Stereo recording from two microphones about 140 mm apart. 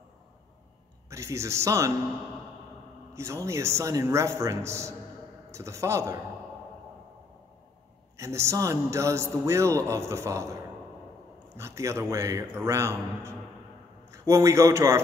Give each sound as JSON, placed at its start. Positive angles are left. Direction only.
{"t": 1.1, "sound": "a man's voice", "side_deg": -20}
{"t": 3.2, "sound": "a man's voice", "side_deg": -20}
{"t": 8.2, "sound": "a man's voice", "side_deg": -20}